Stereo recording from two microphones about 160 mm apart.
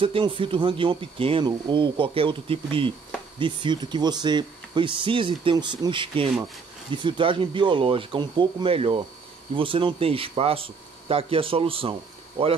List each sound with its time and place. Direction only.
0.0 s speech: 35° right (ahead or behind)